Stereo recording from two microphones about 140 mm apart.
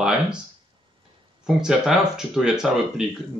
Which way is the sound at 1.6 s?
5° right (ahead or behind).